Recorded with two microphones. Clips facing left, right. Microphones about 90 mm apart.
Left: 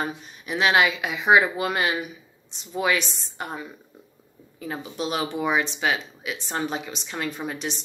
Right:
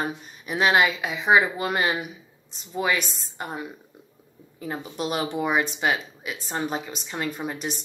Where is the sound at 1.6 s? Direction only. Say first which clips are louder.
Even; 15° right (ahead or behind).